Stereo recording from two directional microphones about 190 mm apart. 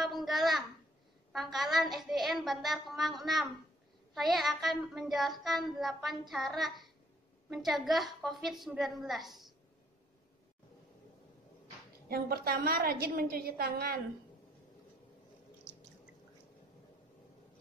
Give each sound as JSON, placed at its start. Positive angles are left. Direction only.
{"t": 0.0, "sound": "a sound", "side_deg": 0}
{"t": 1.3, "sound": "child singing", "side_deg": 0}
{"t": 12.1, "sound": "a woman's voice", "side_deg": -50}